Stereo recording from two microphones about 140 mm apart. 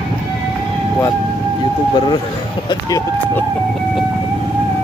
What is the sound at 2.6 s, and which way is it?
Speech, 25° left (ahead or behind).